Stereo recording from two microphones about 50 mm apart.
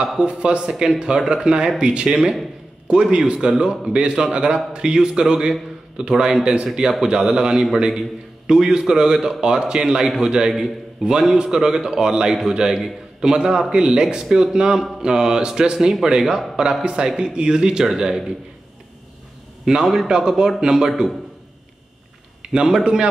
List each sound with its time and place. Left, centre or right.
0.2 s a man's voice: centre
19.7 s a man's voice: centre
22.4 s speech: centre